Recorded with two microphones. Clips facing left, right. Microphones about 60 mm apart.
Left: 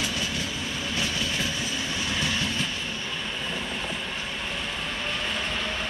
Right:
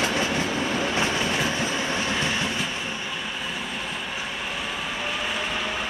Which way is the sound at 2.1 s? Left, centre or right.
Right.